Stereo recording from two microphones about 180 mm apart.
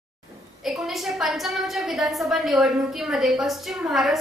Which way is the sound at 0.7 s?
Centre (ahead or behind).